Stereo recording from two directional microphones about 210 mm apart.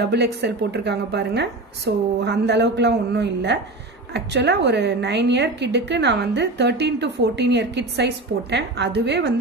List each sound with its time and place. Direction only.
0.0 s a woman's voice: 55° right (ahead or behind)